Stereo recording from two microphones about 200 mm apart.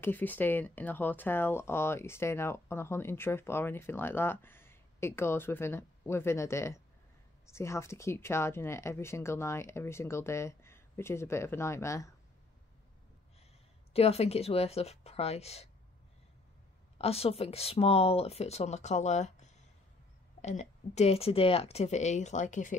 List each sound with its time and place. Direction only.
0.0 s speech: 10° left (ahead or behind)
13.9 s speech: 30° left (ahead or behind)
17.0 s speech: 30° left (ahead or behind)